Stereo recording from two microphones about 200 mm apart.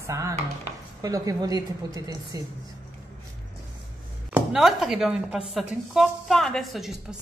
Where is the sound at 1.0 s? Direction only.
20° right (ahead or behind).